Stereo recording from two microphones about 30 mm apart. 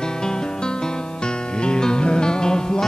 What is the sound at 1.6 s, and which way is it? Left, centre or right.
Music, left.